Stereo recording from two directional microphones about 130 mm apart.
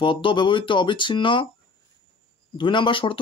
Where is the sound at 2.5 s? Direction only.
40° left (ahead or behind).